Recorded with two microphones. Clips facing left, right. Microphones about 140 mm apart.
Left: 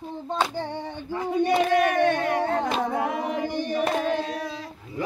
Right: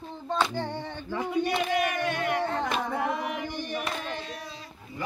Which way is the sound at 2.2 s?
35° left (ahead or behind).